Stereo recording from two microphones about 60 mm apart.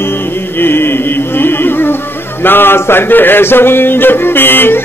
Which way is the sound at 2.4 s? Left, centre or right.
Left.